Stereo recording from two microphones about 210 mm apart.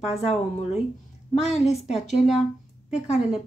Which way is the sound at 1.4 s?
30° left (ahead or behind).